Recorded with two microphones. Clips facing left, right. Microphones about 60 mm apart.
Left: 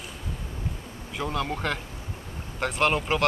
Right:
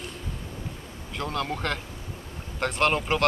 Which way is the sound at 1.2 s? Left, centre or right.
Centre.